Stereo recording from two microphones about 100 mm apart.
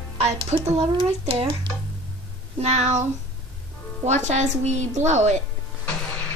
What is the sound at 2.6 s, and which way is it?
Speech, 90° right.